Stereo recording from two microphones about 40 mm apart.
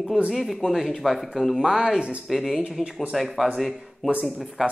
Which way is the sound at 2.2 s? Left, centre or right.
Centre.